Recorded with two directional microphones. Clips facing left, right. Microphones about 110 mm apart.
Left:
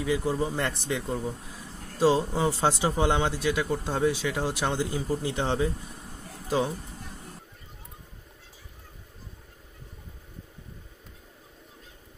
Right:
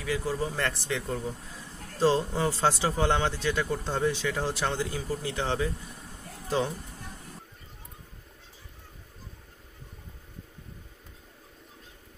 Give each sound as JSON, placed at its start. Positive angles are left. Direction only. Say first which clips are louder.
{"t": 0.0, "sound": "speech", "louder": "left 3 dB", "side_deg": 20}